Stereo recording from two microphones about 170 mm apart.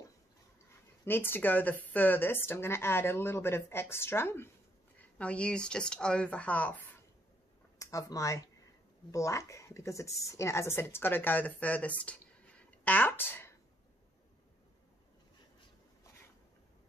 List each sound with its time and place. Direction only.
1.0 s speech: 15° left (ahead or behind)
7.8 s speech: 20° left (ahead or behind)